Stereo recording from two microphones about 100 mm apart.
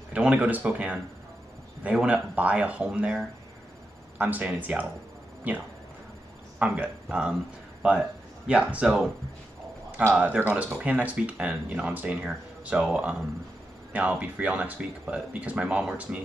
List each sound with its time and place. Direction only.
0.1 s speech: 10° right (ahead or behind)
6.6 s speech: 10° right (ahead or behind)
10.1 s speech: 10° right (ahead or behind)